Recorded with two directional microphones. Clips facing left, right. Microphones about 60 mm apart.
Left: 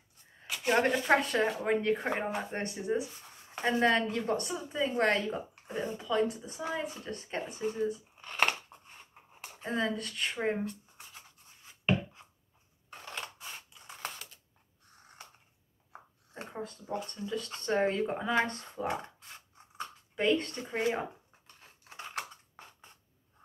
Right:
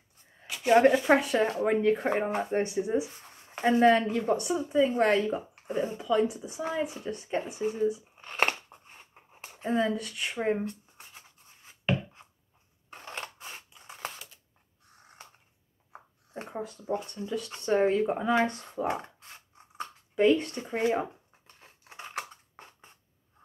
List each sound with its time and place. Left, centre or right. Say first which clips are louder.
0.4 s speech: right 7 dB; centre; by 8.5 s right
8.6 s a sound: right 1 dB; centre
13.0 s scissors: right 2 dB; right
13.7 s scissors: right 3 dB; centre
16.5 s speech: right 5 dB; centre
21.5 s scissors: right 1 dB; centre